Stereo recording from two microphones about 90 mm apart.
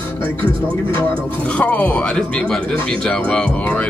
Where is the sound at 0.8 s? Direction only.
25° left (ahead or behind).